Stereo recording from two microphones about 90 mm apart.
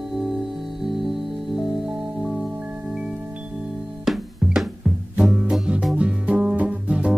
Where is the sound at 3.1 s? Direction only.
25° right (ahead or behind).